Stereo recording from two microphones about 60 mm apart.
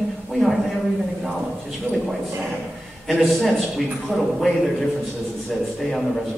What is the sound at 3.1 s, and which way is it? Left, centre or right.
A man's voice, centre.